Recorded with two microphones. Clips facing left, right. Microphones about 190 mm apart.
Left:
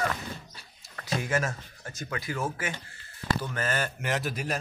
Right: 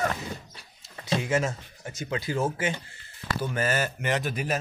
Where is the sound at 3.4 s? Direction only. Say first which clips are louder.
Right 4 dB; 10° right (ahead or behind).